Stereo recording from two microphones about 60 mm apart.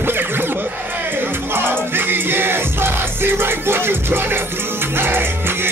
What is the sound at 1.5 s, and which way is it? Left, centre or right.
Music, right.